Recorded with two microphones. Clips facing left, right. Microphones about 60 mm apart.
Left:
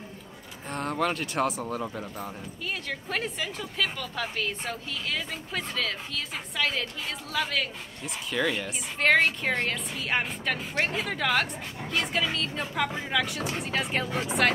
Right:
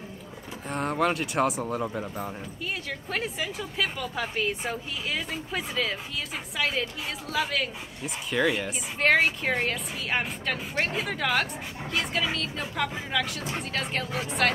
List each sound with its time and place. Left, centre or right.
0.7 s speech: centre